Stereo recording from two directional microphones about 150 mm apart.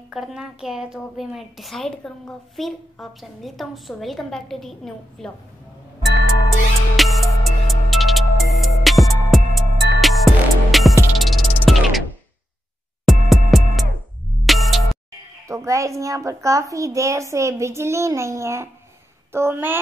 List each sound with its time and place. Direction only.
0.1 s a woman's voice: 5° right (ahead or behind)
7.0 s music: centre (ahead or behind)
13.0 s music: centre (ahead or behind)
15.4 s a child's voice: 20° right (ahead or behind)